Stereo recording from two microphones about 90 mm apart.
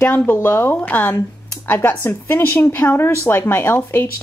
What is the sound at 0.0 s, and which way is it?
A woman's voice, 25° left (ahead or behind).